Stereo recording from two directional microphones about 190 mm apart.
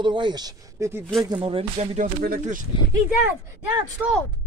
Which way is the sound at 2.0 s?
50° right (ahead or behind).